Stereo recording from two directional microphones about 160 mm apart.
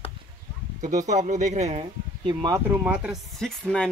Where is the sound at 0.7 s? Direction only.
50° right (ahead or behind); by 2.5 s 35° right (ahead or behind).